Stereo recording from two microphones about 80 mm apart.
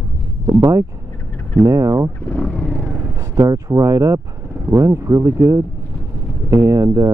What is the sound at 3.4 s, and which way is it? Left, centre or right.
Speech, right.